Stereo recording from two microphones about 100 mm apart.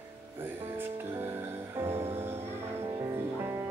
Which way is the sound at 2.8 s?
40° right (ahead or behind).